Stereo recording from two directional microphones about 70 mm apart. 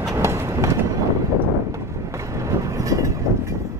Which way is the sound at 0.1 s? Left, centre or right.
Right.